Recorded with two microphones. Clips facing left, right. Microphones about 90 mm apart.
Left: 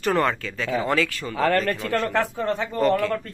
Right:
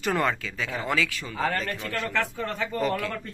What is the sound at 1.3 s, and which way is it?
Speech, 90° left.